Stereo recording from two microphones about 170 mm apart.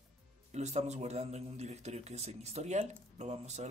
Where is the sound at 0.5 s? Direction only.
40° right (ahead or behind).